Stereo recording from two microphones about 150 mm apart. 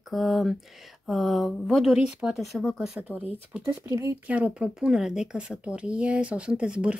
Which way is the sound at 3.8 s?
20° right (ahead or behind).